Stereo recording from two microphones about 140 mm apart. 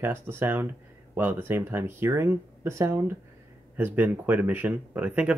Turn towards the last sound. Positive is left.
turn(degrees=-10)  # may be behind; listen again after turning